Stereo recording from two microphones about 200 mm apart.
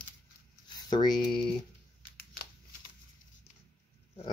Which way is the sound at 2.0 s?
50° left (ahead or behind).